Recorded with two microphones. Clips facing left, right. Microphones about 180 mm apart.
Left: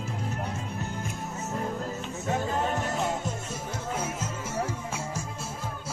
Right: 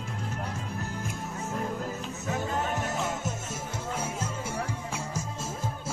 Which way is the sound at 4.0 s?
10° right (ahead or behind).